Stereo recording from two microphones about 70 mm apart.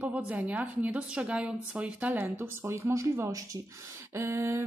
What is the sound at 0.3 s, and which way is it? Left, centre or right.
Speech, right.